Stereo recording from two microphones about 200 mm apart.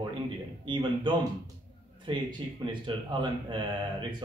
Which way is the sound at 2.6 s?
25° right (ahead or behind).